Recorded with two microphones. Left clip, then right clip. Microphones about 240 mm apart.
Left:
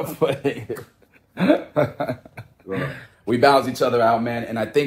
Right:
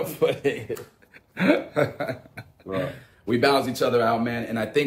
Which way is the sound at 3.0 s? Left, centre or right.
Centre.